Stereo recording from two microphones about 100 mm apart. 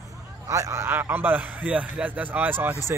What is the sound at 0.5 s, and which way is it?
A man's voice, 30° right (ahead or behind).